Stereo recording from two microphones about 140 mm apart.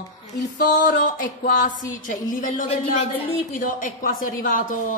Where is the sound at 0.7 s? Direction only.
80° left.